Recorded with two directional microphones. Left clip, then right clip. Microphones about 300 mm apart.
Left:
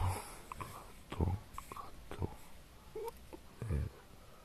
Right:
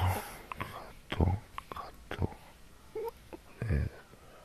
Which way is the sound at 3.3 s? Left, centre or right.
Centre.